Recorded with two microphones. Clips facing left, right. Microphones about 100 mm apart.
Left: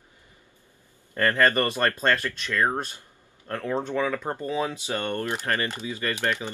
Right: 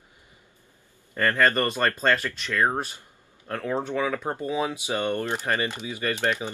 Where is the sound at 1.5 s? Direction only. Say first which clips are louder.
Even; 15° left (ahead or behind).